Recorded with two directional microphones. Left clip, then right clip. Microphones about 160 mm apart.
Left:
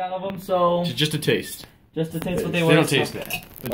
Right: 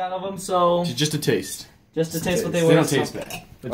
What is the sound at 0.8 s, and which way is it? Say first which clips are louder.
Speech: left 1 dB; 50° right (ahead or behind).